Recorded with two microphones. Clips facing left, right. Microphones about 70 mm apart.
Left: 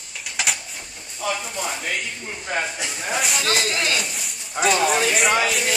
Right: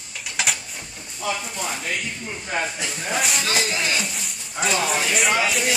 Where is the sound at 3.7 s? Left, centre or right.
Left.